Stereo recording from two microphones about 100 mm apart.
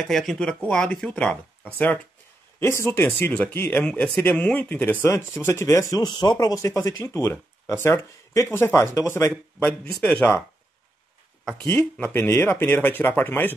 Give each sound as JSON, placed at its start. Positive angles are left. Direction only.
{"t": 0.1, "sound": "speech", "side_deg": 5}
{"t": 2.6, "sound": "speech", "side_deg": 25}
{"t": 4.4, "sound": "speech", "side_deg": 15}
{"t": 6.5, "sound": "speech", "side_deg": 35}
{"t": 9.3, "sound": "speech", "side_deg": 10}
{"t": 11.6, "sound": "speech", "side_deg": 25}